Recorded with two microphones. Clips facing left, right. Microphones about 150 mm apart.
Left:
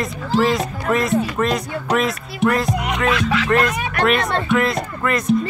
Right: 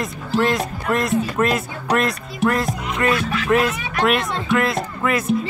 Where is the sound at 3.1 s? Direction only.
90° left.